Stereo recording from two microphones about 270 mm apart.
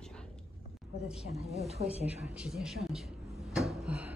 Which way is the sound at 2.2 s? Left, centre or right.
Centre.